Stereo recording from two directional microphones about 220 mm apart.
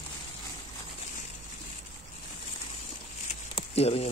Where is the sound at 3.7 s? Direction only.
30° left (ahead or behind).